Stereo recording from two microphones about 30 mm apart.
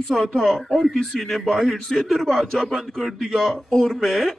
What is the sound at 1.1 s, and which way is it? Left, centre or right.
A man's voice, centre.